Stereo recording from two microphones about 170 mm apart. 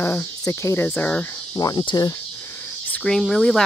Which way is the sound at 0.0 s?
15° left (ahead or behind).